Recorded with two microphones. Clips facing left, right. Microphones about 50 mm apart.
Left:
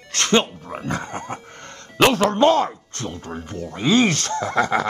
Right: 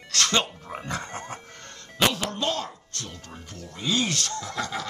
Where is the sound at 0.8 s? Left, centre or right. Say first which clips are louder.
Left 6 dB; left.